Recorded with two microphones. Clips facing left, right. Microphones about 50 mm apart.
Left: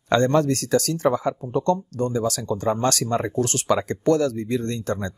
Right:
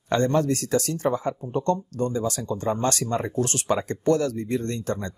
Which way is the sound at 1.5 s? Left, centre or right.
Left.